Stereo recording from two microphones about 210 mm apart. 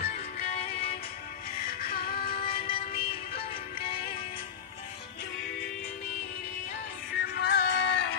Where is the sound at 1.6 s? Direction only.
45° left (ahead or behind).